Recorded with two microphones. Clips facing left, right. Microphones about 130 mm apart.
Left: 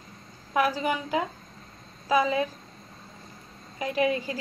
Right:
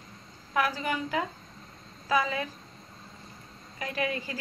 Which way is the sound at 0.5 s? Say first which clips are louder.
Left 4 dB; 20° left (ahead or behind).